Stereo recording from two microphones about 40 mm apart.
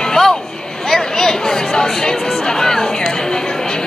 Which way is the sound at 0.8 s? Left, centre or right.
Centre.